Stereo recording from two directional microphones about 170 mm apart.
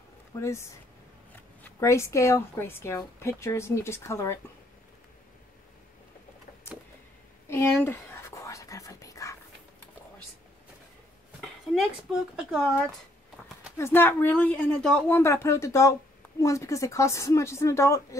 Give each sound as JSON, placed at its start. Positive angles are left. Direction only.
{"t": 0.3, "sound": "a woman's voice", "side_deg": 15}
{"t": 7.4, "sound": "a sound", "side_deg": 15}
{"t": 7.8, "sound": "whispering", "side_deg": 15}
{"t": 11.4, "sound": "speech", "side_deg": 0}
{"t": 13.7, "sound": "a woman's voice", "side_deg": 15}